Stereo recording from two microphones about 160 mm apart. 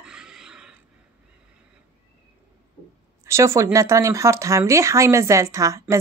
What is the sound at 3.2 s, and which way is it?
A woman's voice, 20° right (ahead or behind).